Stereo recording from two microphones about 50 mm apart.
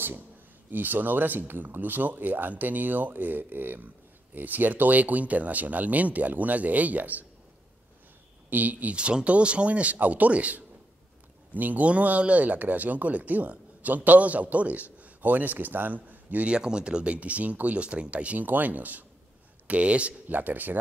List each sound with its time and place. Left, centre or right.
0.7 s speech: right
8.5 s speech: right
8.9 s speech: right
16.4 s speech: centre; by 20.8 s right